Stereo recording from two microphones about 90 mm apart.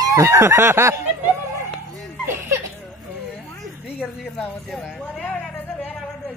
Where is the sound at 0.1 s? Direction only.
35° right (ahead or behind).